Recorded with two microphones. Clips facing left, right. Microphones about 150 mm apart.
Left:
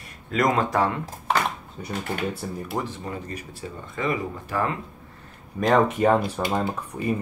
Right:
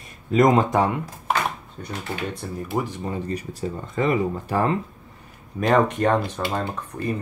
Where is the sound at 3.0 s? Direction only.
35° right (ahead or behind).